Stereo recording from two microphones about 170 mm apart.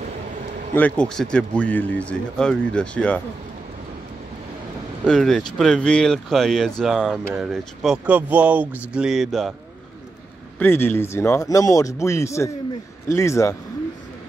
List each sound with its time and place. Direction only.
0.7 s speech: 5° left (ahead or behind)
5.0 s speech: 5° left (ahead or behind)
10.6 s speech: 10° left (ahead or behind)